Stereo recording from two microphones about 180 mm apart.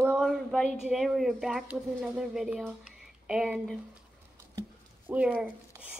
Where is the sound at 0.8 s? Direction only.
Centre (ahead or behind).